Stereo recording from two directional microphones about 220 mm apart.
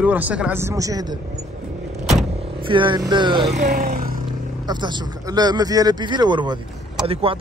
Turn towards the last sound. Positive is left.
turn(degrees=-25)  # may be behind; listen again after turning